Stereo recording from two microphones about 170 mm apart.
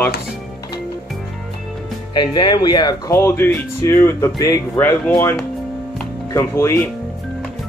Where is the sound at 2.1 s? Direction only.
25° left (ahead or behind).